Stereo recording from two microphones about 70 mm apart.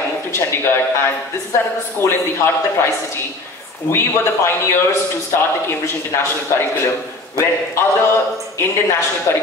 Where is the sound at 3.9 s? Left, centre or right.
Left.